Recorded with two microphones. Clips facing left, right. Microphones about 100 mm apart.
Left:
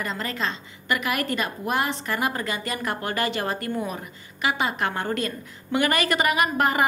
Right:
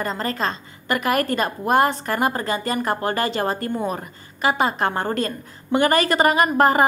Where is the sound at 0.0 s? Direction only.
40° right (ahead or behind).